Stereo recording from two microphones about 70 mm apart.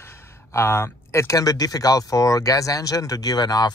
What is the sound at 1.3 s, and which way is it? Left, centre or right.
Speech, left.